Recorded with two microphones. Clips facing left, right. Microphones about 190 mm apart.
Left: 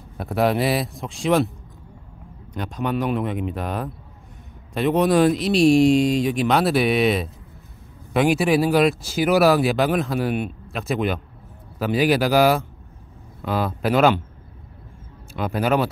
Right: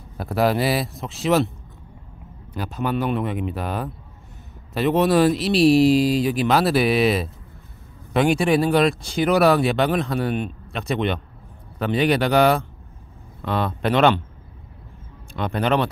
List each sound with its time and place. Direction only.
0.2 s speech: centre (ahead or behind)
2.5 s speech: 5° right (ahead or behind)
15.3 s speech: 5° left (ahead or behind)